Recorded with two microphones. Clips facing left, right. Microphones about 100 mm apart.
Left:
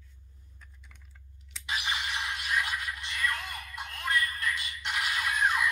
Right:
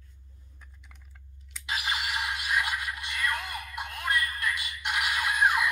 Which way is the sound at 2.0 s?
10° right (ahead or behind).